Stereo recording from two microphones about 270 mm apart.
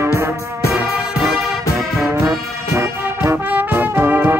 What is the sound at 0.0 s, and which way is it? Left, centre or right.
Music, centre.